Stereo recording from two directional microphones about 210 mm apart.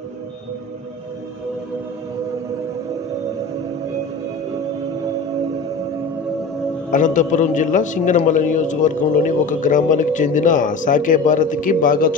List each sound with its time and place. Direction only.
6.9 s a man's voice: 35° left (ahead or behind)